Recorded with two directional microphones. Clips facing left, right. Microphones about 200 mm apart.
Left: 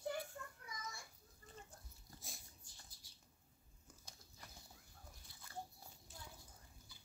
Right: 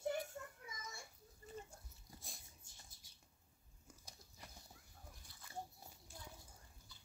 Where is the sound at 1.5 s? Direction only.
5° right (ahead or behind).